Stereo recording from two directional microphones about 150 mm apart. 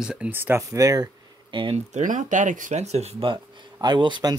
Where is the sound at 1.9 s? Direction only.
55° right (ahead or behind).